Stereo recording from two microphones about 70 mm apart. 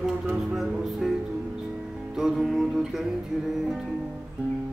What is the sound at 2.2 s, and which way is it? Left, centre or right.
Speech, centre.